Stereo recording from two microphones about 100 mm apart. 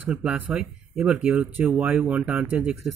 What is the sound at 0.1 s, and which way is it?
Speech, 10° right (ahead or behind).